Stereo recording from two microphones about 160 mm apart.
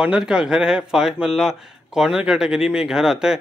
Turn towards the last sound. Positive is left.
turn(degrees=-5)  # may be behind; listen again after turning